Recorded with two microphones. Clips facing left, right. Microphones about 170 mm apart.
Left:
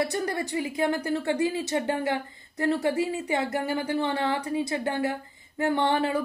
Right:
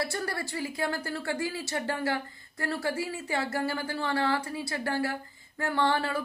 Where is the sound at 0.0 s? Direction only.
20° left (ahead or behind).